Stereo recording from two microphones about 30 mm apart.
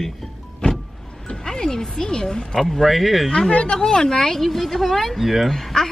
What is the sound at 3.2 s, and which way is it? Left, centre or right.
Speech, left.